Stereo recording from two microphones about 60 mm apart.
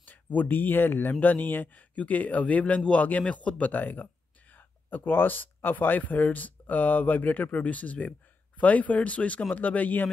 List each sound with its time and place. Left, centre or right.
0.0 s speech: left